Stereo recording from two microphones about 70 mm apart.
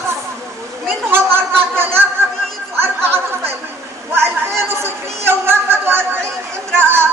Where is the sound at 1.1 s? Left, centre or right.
Right.